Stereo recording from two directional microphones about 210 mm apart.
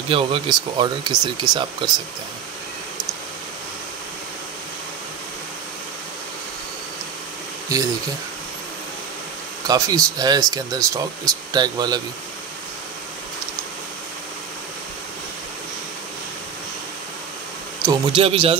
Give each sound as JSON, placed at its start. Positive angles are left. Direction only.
{"t": 0.1, "sound": "speech", "side_deg": -25}
{"t": 9.7, "sound": "speech", "side_deg": -15}
{"t": 17.8, "sound": "speech", "side_deg": -25}